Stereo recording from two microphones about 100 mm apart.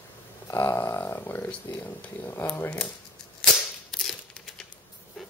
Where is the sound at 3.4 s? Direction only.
5° left (ahead or behind).